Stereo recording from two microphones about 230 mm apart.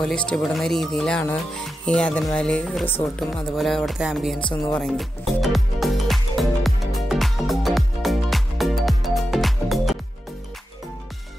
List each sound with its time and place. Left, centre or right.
0.0 s speech: centre
4.4 s music: centre
4.9 s music: centre